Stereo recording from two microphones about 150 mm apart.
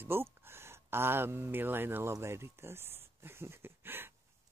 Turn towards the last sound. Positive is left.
turn(degrees=-15)  # may be behind; listen again after turning